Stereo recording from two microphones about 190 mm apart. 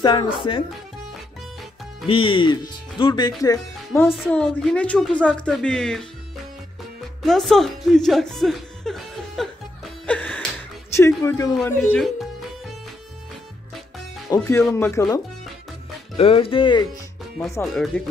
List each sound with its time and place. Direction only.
0.0 s speech: 25° left (ahead or behind)
2.0 s speech: 25° left (ahead or behind); by 6.0 s centre (ahead or behind)
7.2 s speech: centre (ahead or behind)
10.0 s music: 5° left (ahead or behind)
10.9 s speech: 15° left (ahead or behind)
14.3 s speech: 15° left (ahead or behind)
16.2 s speech: 30° left (ahead or behind)
17.9 s speech: 10° left (ahead or behind)